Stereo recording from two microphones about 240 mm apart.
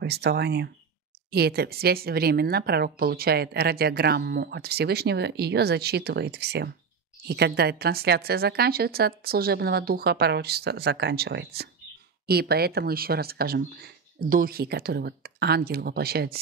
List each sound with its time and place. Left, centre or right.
0.0 s a woman's voice: right